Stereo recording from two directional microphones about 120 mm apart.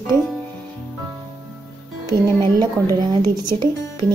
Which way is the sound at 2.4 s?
35° right (ahead or behind).